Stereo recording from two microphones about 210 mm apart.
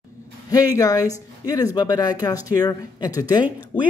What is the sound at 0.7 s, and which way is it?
Speech, 15° left (ahead or behind).